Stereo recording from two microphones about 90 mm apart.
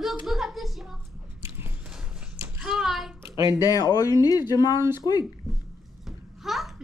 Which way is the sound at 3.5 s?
45° left (ahead or behind).